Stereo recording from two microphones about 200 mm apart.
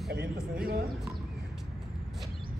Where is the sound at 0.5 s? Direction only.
50° right (ahead or behind).